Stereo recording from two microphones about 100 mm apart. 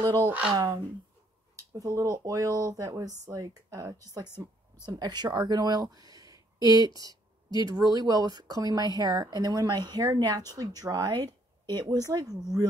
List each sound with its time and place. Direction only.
0.5 s speech: 40° right (ahead or behind)